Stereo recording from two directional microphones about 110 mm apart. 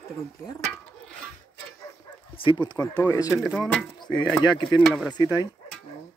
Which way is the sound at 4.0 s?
40° left (ahead or behind).